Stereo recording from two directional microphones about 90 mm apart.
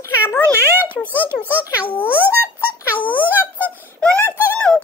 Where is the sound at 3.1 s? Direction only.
20° right (ahead or behind).